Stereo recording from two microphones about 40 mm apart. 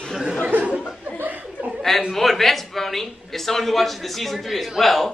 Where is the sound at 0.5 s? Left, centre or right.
Right.